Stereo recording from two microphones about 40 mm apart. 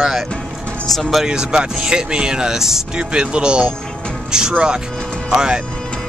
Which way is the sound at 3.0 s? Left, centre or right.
Right.